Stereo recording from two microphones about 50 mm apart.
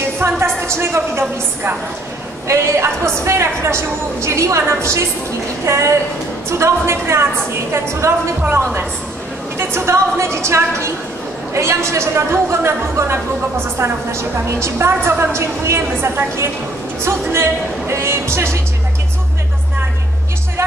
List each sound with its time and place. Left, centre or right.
0.2 s music: right
0.6 s speech: right
2.4 s a woman's voice: right
5.7 s a woman's voice: right
6.6 s a woman's voice: right
8.5 s a woman's voice: right
9.6 s speech: right